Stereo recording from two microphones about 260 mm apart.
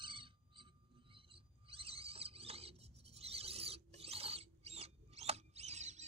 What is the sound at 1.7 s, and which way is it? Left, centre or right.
Rodents, right.